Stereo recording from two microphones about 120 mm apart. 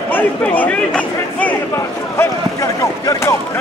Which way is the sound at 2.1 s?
25° left (ahead or behind).